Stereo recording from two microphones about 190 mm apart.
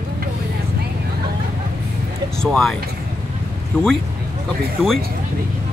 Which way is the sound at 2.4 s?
Centre (ahead or behind).